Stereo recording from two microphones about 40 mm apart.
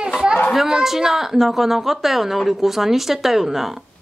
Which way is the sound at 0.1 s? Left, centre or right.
Centre.